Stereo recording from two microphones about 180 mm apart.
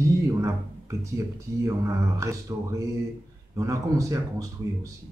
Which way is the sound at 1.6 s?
15° right (ahead or behind).